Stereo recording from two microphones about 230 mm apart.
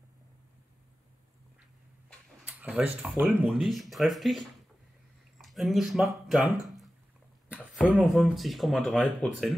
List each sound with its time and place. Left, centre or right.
2.0 s speech: centre